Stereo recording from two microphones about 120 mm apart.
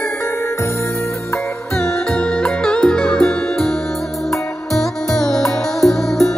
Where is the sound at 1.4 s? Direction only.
5° left (ahead or behind).